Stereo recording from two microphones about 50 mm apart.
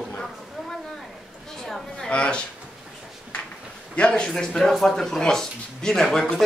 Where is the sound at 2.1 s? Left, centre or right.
Left.